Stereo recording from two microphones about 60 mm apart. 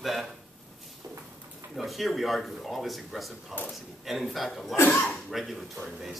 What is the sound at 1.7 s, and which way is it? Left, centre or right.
Speech, centre.